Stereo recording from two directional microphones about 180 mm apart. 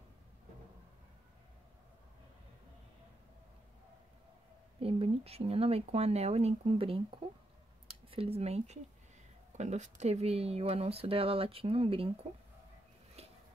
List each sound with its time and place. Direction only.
4.7 s speech: 30° right (ahead or behind)